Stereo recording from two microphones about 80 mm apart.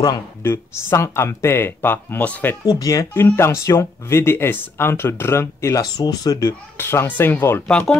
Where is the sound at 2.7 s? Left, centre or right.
Left.